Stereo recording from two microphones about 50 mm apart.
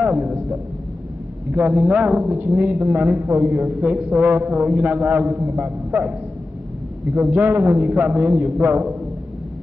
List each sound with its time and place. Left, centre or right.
0.0 s a sound: centre
1.5 s a woman's voice: right
3.9 s a man's voice: right